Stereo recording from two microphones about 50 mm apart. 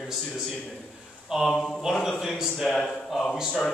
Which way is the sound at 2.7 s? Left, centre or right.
Centre.